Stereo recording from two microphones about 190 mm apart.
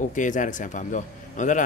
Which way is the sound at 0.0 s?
40° left (ahead or behind).